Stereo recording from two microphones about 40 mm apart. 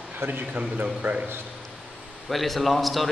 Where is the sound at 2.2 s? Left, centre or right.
Centre.